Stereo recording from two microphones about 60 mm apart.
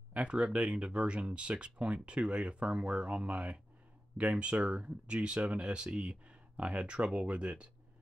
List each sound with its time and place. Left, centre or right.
0.1 s speech: centre